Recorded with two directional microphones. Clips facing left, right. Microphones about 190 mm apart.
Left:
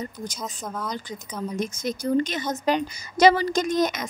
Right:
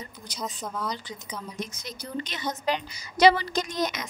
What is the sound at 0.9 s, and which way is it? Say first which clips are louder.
Speech: left 5 dB; 45° left (ahead or behind).